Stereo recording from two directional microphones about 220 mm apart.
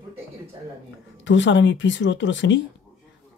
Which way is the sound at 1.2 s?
55° left (ahead or behind).